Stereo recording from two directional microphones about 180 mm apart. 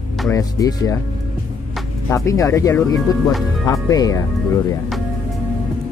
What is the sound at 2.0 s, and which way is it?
Speech, 20° left (ahead or behind).